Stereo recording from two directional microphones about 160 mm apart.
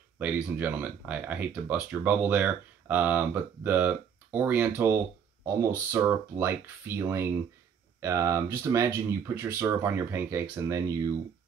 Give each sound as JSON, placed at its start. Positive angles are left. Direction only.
{"t": 0.2, "sound": "speech", "side_deg": -10}